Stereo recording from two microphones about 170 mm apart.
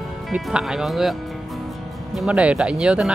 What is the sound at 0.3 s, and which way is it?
Speech, 5° right (ahead or behind).